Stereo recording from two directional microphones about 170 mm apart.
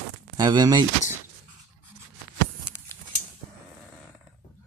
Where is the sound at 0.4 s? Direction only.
25° right (ahead or behind).